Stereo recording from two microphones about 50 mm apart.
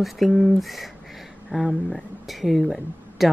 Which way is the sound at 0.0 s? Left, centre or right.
Centre.